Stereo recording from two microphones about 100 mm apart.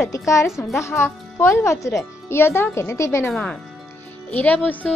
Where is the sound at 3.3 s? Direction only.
10° left (ahead or behind).